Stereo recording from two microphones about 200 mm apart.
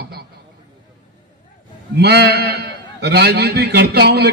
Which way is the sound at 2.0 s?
55° right (ahead or behind).